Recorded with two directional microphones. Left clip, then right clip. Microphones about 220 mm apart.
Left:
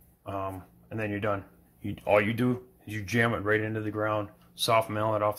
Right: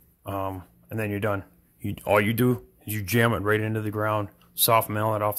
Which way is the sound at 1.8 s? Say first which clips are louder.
Right 2 dB; 35° right (ahead or behind).